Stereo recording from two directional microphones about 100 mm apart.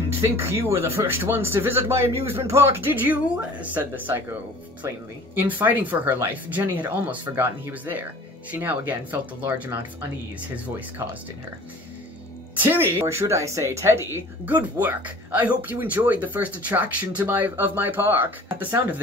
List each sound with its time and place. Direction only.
0.2 s speech: 25° right (ahead or behind)
12.5 s speech: 20° right (ahead or behind)
14.4 s speech: 15° right (ahead or behind)